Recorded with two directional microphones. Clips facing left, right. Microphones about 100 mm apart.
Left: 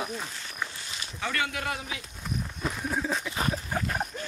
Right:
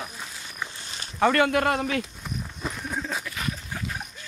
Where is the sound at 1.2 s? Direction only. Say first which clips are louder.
Right 11 dB; 55° right (ahead or behind).